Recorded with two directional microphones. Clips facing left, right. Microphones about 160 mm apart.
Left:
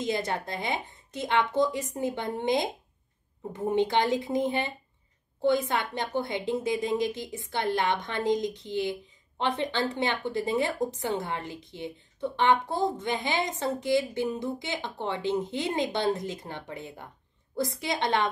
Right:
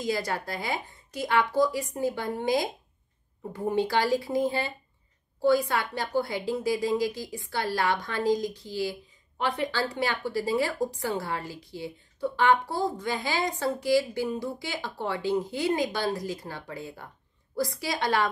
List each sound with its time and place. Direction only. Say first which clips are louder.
0.0 s a woman's voice: even; 20° left (ahead or behind)